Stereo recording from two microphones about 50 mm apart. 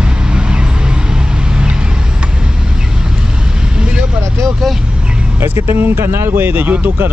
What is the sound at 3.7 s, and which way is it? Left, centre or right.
Vehicle, centre.